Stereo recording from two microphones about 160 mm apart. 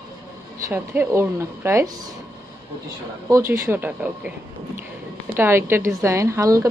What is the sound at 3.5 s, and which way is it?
A woman's voice, 15° right (ahead or behind).